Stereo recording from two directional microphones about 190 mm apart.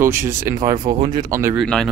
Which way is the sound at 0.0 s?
10° right (ahead or behind).